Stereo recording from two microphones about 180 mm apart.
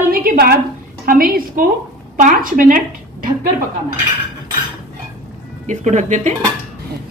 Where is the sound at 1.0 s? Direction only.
50° right (ahead or behind).